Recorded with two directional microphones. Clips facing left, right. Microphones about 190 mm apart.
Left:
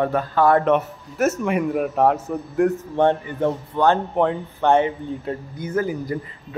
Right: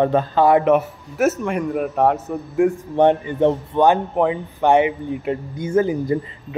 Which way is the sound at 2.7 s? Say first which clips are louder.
Right 3 dB; 15° right (ahead or behind).